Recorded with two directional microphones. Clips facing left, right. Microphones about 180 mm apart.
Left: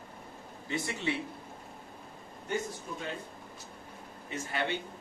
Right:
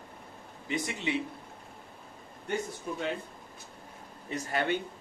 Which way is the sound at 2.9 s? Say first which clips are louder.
Right 5 dB; 60° right (ahead or behind).